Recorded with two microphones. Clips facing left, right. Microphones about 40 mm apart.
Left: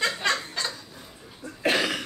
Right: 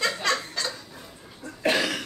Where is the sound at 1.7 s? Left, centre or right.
Centre.